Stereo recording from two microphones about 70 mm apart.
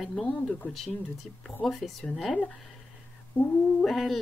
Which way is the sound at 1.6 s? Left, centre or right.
Centre.